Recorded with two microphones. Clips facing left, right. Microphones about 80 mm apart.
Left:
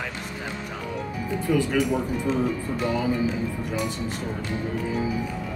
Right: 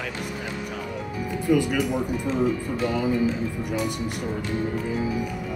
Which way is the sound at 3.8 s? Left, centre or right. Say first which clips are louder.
Right 1 dB; right.